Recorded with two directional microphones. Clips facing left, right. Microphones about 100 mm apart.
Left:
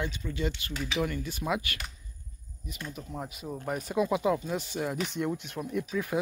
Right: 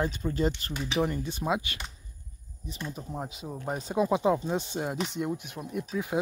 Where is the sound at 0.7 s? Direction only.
25° right (ahead or behind).